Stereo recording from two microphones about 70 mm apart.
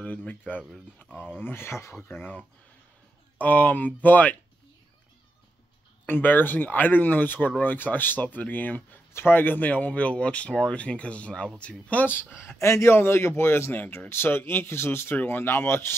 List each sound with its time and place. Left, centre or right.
0.0 s speech: centre; by 2.0 s left
2.0 s speech: left
6.0 s speech: left
11.9 s speech: left
12.5 s speech: left